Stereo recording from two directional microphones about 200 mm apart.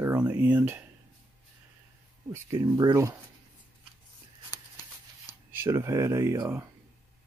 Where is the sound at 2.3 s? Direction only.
15° right (ahead or behind).